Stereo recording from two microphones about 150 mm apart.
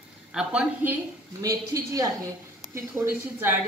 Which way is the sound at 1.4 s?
25° right (ahead or behind).